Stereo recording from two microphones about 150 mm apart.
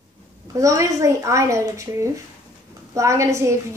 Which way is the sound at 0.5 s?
20° right (ahead or behind).